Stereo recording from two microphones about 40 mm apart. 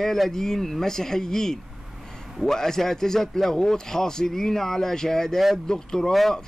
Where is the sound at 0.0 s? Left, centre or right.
Centre.